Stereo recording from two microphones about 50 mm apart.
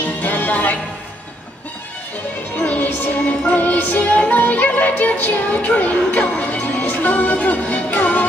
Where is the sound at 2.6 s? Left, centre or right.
Left.